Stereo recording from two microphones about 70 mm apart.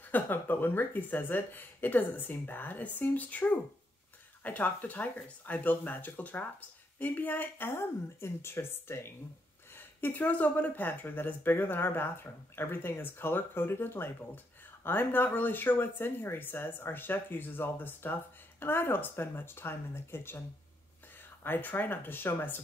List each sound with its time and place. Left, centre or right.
0.1 s a woman's voice: left